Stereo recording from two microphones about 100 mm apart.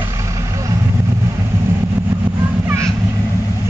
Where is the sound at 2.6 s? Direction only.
30° right (ahead or behind).